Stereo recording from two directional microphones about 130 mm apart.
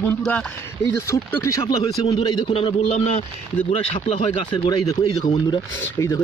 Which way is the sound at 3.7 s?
40° left (ahead or behind).